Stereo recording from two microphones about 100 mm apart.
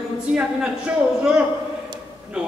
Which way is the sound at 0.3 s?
10° right (ahead or behind).